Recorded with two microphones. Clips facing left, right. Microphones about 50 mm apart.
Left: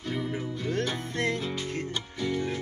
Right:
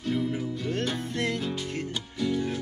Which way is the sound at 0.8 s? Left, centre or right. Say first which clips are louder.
Even; left.